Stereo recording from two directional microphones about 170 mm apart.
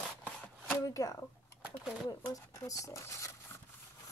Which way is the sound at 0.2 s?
10° left (ahead or behind).